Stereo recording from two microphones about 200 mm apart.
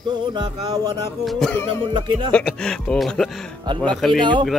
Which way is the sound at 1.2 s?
5° left (ahead or behind).